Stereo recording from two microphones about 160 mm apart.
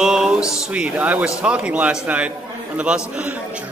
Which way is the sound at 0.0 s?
5° right (ahead or behind).